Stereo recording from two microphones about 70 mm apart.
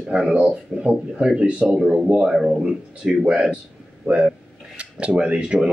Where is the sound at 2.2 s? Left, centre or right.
Centre.